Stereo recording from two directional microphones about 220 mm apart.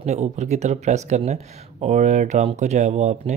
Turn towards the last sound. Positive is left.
turn(degrees=-30)  # may be behind; listen again after turning